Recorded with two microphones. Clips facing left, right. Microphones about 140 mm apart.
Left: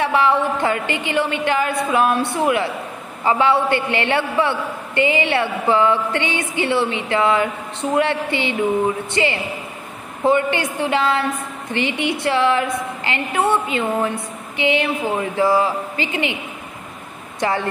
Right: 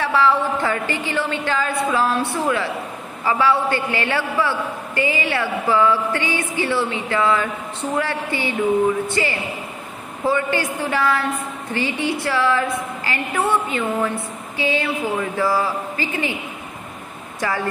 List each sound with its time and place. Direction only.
0.0 s a woman's voice: 20° left (ahead or behind)
17.4 s speech: 25° left (ahead or behind)